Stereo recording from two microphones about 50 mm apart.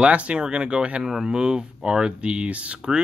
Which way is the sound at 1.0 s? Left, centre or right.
Centre.